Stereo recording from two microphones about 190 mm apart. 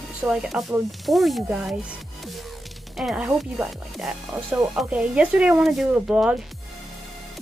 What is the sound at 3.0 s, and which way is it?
Speech, 5° right (ahead or behind).